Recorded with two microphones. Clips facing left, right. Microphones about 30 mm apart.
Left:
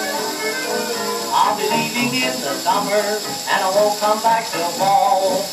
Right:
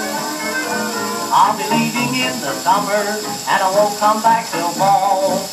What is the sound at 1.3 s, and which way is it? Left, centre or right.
Speech, centre.